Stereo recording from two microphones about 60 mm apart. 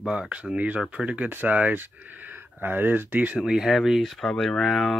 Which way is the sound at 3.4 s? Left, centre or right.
Centre.